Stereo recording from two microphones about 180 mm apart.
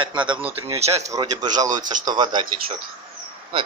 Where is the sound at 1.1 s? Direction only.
20° right (ahead or behind).